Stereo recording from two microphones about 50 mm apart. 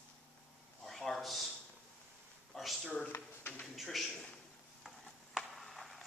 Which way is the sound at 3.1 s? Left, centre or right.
Left.